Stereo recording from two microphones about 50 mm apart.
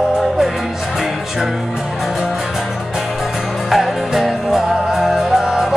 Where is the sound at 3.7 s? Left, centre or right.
Centre.